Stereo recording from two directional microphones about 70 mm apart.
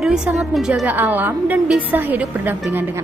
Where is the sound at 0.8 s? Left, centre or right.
Right.